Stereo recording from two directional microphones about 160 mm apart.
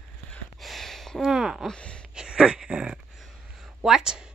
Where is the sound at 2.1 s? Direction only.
5° right (ahead or behind).